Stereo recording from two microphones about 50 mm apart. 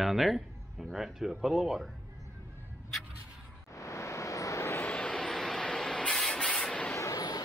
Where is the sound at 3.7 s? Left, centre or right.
Left.